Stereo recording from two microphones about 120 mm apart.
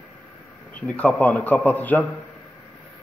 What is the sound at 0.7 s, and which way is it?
Speech, 10° left (ahead or behind).